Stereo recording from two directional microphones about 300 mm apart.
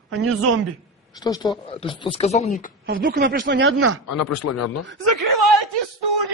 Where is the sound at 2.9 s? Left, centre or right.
Right.